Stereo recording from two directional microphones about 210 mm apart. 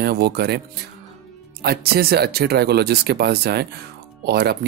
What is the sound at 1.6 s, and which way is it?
Speech, 50° right (ahead or behind).